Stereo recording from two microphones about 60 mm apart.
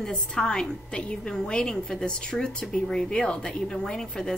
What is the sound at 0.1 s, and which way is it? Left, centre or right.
A woman's voice, centre.